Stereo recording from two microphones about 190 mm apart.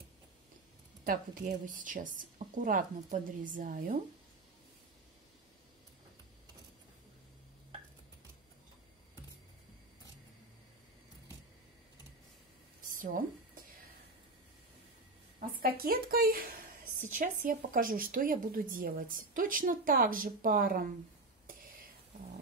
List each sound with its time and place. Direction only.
1.0 s a woman's voice: 45° right (ahead or behind)
12.8 s a sound: 45° right (ahead or behind)
15.3 s a woman's voice: 50° right (ahead or behind)